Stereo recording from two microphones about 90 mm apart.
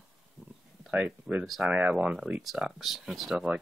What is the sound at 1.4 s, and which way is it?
Speech, centre (ahead or behind).